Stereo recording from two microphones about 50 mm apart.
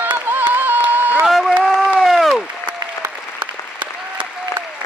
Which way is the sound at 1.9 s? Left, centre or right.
Centre.